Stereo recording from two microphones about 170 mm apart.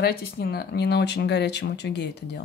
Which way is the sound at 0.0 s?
70° left (ahead or behind).